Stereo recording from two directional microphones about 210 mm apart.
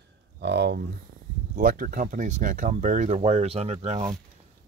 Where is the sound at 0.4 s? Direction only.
55° right (ahead or behind).